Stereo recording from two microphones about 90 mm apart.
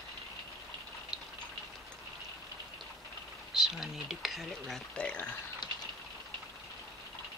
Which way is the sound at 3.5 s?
5° right (ahead or behind).